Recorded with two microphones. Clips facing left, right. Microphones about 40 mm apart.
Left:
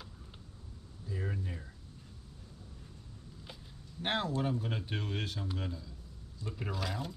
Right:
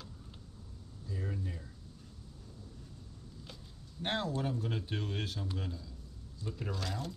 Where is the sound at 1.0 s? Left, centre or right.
Centre.